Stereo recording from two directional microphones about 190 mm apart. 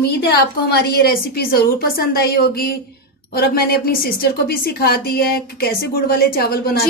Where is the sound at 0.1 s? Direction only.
55° left (ahead or behind).